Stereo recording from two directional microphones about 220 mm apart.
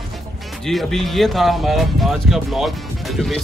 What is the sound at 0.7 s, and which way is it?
Speech, centre (ahead or behind).